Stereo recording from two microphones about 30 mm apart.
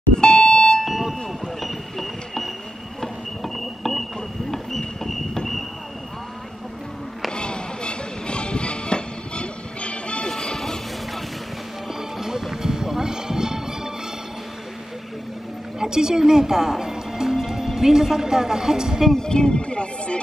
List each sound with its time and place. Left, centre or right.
0.2 s alarm: left
0.8 s a sound: centre
7.2 s music: left
10.2 s smash: centre
12.2 s music: centre
15.8 s speech: right
19.1 s speech: left